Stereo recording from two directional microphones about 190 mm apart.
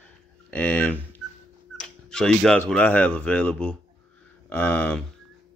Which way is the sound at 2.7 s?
5° left (ahead or behind).